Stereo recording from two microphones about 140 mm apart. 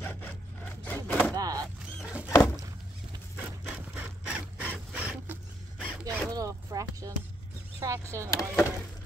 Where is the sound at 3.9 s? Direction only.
10° right (ahead or behind).